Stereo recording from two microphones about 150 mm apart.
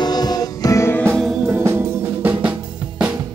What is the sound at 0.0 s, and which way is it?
Music, 25° left (ahead or behind).